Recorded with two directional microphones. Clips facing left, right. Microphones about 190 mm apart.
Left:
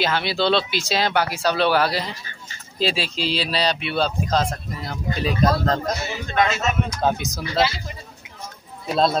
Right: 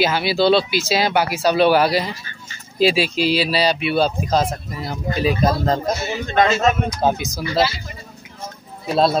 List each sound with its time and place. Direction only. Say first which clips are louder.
0.0 s speech: right 4 dB; 5° right (ahead or behind)
6.3 s speech: right 5 dB; 35° right (ahead or behind)
7.2 s speech: right 3 dB; centre (ahead or behind)
8.8 s a man's voice: right 3 dB; 5° right (ahead or behind)